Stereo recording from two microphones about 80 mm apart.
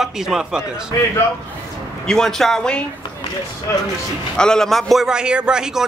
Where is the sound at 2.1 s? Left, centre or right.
Centre.